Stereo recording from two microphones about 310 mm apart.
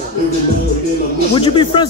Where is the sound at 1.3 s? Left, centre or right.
Centre.